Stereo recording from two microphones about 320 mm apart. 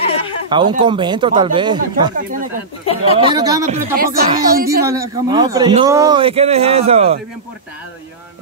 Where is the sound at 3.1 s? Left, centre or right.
Centre.